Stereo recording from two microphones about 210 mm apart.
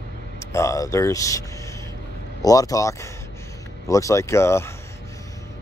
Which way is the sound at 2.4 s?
15° left (ahead or behind).